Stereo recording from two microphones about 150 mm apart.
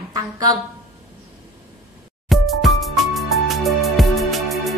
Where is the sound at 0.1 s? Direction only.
25° right (ahead or behind).